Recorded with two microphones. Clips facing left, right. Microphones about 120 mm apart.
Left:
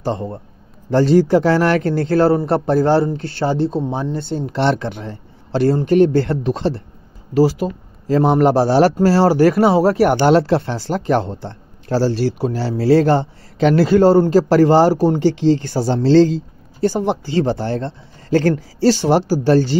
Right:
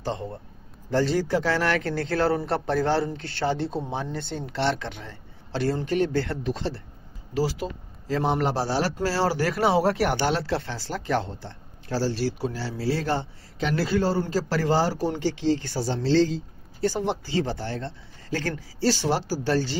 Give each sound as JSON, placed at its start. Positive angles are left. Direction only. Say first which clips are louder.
{"t": 0.0, "sound": "speech", "louder": "left 8 dB", "side_deg": 45}
{"t": 0.8, "sound": "a man's voice", "louder": "left 10 dB", "side_deg": 60}
{"t": 4.6, "sound": "speech", "louder": "left 7 dB", "side_deg": 55}
{"t": 7.3, "sound": "speech", "louder": "left 11 dB", "side_deg": 50}
{"t": 8.9, "sound": "a man's voice", "louder": "left 11 dB", "side_deg": 45}
{"t": 10.0, "sound": "speech", "louder": "left 11 dB", "side_deg": 65}
{"t": 16.8, "sound": "speech", "louder": "left 8 dB", "side_deg": 50}
{"t": 18.3, "sound": "speech", "louder": "left 14 dB", "side_deg": 45}
{"t": 18.9, "sound": "speech", "louder": "left 10 dB", "side_deg": 60}